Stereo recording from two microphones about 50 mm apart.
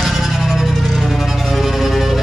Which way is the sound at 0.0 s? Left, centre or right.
Centre.